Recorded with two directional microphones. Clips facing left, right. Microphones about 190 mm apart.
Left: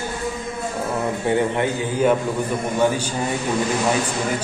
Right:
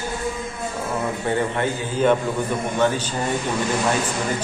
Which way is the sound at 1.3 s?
15° left (ahead or behind).